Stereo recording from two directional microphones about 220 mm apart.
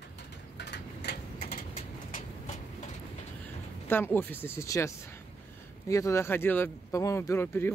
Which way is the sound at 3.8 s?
10° left (ahead or behind).